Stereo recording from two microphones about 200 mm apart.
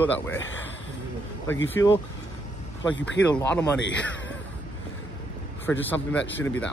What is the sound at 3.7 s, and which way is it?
Speech, 65° left (ahead or behind).